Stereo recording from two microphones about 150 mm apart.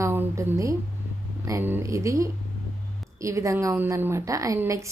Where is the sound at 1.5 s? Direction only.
15° right (ahead or behind).